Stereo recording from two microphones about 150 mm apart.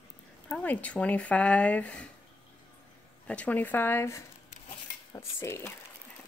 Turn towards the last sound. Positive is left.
turn(degrees=15)  # may be behind; listen again after turning